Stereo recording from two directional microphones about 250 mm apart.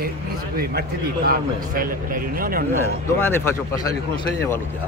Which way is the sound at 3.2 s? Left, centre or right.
Centre.